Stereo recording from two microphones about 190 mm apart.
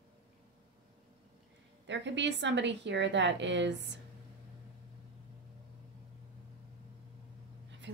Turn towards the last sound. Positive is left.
turn(degrees=-70)  # may be behind; listen again after turning